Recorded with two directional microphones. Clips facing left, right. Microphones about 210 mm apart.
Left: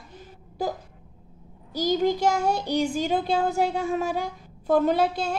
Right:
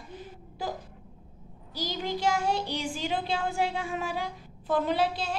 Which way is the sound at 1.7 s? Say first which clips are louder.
Left 10 dB; 45° left (ahead or behind).